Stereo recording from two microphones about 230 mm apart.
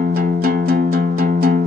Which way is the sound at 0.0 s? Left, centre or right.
Right.